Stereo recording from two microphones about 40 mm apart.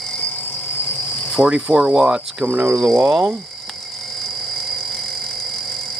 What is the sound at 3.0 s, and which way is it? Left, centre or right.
Cricket, right.